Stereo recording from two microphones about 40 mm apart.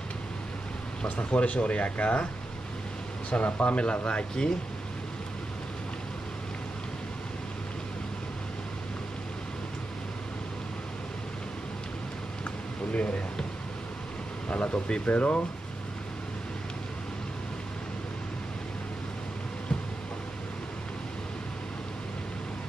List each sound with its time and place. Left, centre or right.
1.0 s speech: left
3.3 s speech: left
12.4 s a sound: left
14.5 s speech: left
15.0 s speech: left